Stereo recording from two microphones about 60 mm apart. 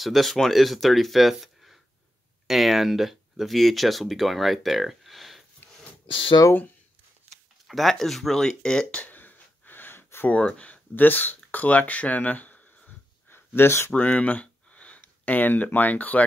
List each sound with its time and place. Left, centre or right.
0.0 s speech: centre
5.6 s wheeze: left
7.6 s speech: centre
9.0 s a sound: left
10.3 s speech: left
13.3 s speech: left
13.9 s a sound: left
15.0 s speech: left